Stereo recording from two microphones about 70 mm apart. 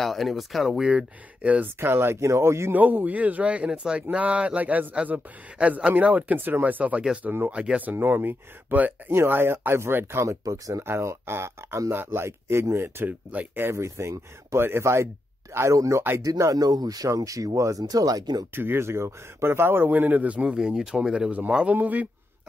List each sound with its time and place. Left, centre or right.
0.0 s speech: centre
0.8 s speech: centre
1.8 s speech: right
2.7 s speech: right
7.5 s speech: centre; by 10.2 s right
10.2 s speech: right
10.9 s speech: right
13.3 s speech: right
13.7 s speech: right
15.7 s speech: right
18.5 s speech: right; by 21.7 s centre
21.7 s speech: right